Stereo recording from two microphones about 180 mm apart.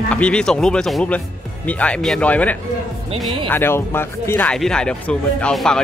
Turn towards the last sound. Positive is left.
turn(degrees=5)  # may be behind; listen again after turning